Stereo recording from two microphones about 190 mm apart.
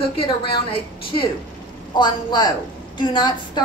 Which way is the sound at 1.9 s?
20° left (ahead or behind).